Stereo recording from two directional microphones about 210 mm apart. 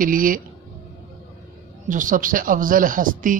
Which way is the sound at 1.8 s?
40° right (ahead or behind).